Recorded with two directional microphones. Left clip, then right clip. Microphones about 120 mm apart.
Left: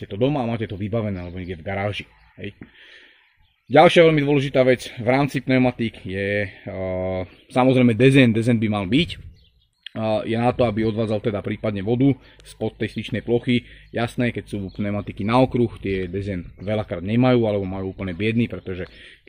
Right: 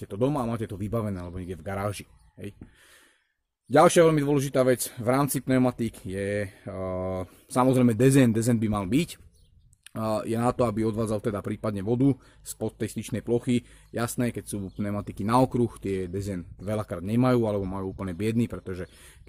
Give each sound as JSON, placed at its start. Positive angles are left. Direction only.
{"t": 0.1, "sound": "speech", "side_deg": -30}
{"t": 3.7, "sound": "a man's voice", "side_deg": -15}
{"t": 10.0, "sound": "a man's voice", "side_deg": -25}